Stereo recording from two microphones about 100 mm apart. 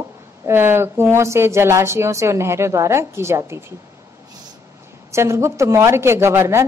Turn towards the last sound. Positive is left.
turn(degrees=-25)  # may be behind; listen again after turning